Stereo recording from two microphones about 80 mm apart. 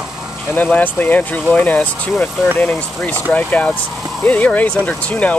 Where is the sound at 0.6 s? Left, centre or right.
Left.